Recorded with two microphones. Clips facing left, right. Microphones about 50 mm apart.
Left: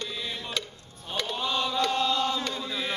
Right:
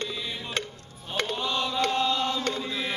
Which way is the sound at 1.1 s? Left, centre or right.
Right.